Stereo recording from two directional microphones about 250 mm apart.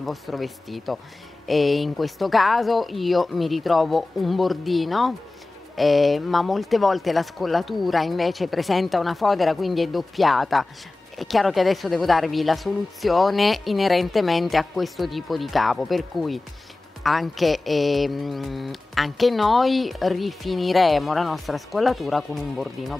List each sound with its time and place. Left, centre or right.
0.0 s mantra: centre